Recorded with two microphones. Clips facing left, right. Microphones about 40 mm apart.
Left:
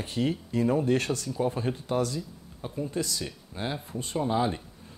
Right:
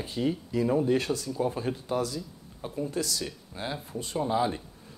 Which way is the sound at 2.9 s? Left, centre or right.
Left.